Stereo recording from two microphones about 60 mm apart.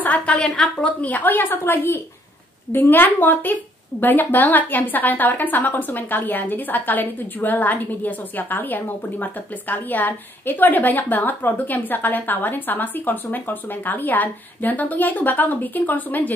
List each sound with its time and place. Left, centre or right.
0.0 s a woman's voice: left